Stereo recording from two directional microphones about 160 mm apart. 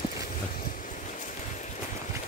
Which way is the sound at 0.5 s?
55° left (ahead or behind).